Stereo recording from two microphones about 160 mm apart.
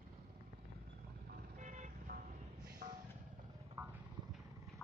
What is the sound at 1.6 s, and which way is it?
Vehicle, 50° right (ahead or behind).